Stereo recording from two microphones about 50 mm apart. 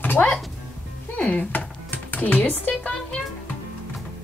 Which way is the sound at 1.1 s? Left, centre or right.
Left.